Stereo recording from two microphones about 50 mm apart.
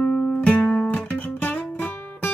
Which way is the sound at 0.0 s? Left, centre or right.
Left.